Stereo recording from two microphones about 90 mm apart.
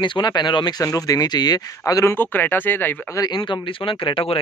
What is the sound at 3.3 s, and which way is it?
Speech, 60° left (ahead or behind).